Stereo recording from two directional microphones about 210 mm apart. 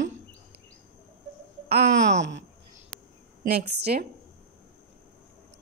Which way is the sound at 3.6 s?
50° right (ahead or behind).